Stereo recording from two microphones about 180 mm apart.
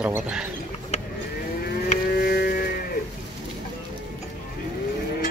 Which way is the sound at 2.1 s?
60° left (ahead or behind).